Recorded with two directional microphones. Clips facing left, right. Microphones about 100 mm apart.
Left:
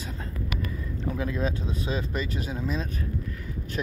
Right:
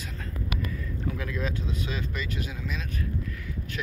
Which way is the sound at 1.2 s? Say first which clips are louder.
Left 3 dB; 30° left (ahead or behind).